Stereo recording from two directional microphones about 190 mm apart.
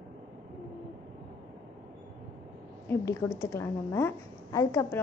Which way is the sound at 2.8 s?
15° left (ahead or behind).